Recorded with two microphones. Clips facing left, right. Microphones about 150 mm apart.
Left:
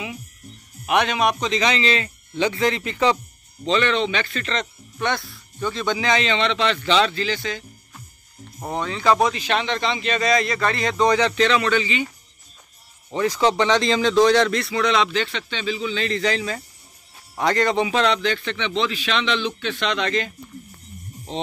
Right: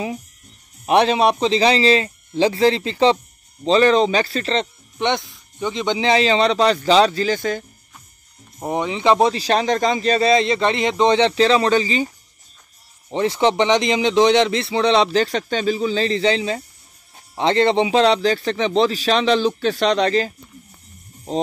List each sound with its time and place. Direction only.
0.8 s speech: 30° right (ahead or behind); by 7.6 s 50° right (ahead or behind)
8.5 s speech: 20° right (ahead or behind); by 12.1 s 35° right (ahead or behind)
13.1 s speech: 25° right (ahead or behind)